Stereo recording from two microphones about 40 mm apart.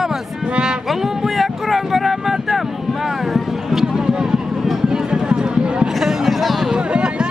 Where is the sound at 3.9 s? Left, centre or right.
Centre.